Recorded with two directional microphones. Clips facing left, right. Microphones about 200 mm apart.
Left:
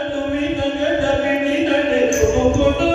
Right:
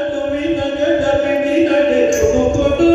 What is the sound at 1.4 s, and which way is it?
Music, 40° right (ahead or behind).